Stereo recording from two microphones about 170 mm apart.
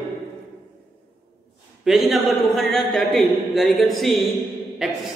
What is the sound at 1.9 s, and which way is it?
Speech, centre (ahead or behind).